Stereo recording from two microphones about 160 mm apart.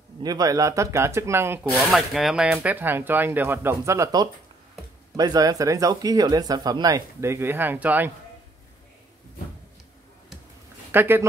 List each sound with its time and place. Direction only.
0.2 s speech: 25° right (ahead or behind)
1.8 s speech: centre (ahead or behind)
10.9 s speech: 15° right (ahead or behind)